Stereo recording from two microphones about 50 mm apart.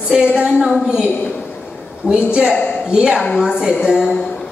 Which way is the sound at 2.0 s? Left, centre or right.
Centre.